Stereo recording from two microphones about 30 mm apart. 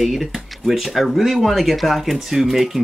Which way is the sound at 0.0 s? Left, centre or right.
Centre.